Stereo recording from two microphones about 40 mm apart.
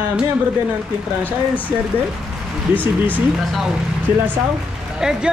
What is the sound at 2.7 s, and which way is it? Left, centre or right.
Speech, right.